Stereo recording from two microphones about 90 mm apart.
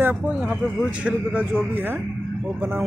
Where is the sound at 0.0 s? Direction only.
15° right (ahead or behind).